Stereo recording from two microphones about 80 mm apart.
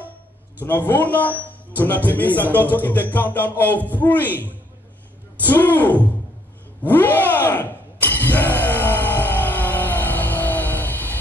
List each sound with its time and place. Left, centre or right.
0.7 s speech: left
5.5 s speech: left
6.9 s shatter: left